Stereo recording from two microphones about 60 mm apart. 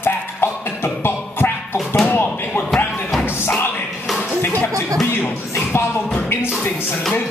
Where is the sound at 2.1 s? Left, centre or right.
Left.